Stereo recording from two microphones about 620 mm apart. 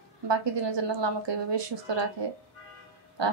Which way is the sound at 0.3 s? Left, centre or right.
Right.